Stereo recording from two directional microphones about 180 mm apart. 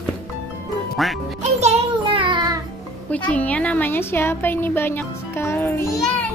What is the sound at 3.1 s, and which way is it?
A woman's voice, 10° left (ahead or behind).